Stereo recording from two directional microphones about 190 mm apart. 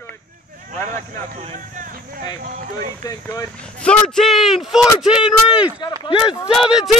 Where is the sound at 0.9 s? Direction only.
40° right (ahead or behind).